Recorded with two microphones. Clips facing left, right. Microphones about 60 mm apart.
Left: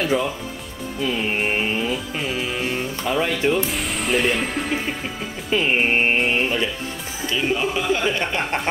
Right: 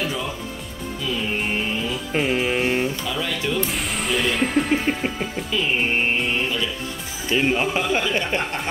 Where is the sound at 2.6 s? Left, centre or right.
Right.